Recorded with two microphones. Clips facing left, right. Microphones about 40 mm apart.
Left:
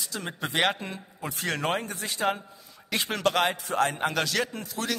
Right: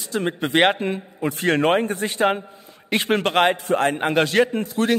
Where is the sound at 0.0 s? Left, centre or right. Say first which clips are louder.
Right 9 dB; right.